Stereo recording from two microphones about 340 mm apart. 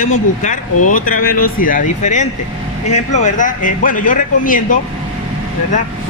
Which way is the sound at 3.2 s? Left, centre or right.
Left.